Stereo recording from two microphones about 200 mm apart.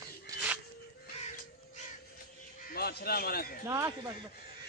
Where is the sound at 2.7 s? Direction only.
50° left (ahead or behind).